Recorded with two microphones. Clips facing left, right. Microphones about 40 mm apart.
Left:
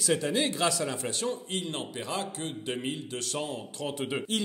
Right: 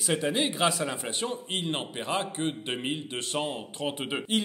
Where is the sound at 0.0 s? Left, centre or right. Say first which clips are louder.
Even; right.